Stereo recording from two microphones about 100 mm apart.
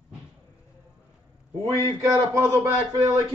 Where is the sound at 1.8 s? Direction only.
25° right (ahead or behind).